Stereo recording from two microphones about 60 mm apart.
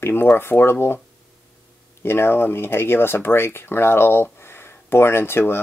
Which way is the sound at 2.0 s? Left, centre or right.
Left.